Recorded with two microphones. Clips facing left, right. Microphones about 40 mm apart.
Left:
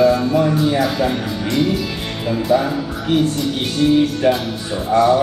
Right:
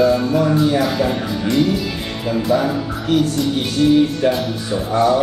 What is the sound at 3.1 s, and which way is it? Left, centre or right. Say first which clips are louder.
Speech: even; left.